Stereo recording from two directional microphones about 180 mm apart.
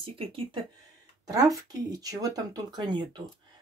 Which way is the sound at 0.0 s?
30° right (ahead or behind).